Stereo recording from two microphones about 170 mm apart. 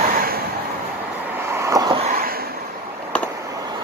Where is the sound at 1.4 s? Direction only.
15° right (ahead or behind).